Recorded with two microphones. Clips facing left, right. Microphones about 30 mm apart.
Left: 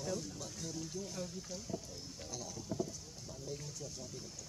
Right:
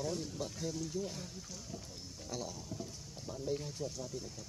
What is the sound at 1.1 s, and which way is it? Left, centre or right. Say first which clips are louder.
Speech: left 3 dB; centre.